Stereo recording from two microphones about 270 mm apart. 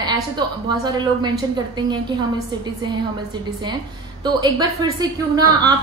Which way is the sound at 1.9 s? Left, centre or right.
Centre.